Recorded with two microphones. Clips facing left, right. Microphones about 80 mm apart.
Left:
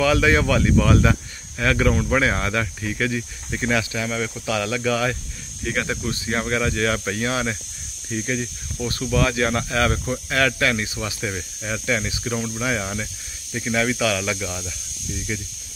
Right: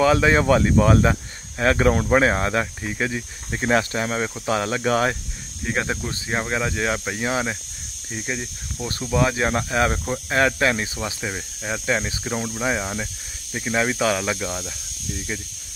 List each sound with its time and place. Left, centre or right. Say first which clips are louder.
0.0 s speech: right 1 dB; right
5.7 s speech: even; right